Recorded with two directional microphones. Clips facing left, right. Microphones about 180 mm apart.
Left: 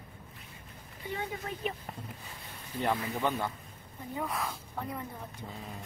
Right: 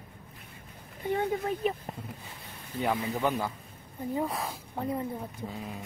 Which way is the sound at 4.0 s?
35° right (ahead or behind).